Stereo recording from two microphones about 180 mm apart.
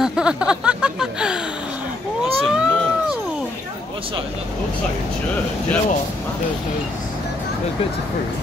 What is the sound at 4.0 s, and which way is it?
Speech, 30° right (ahead or behind).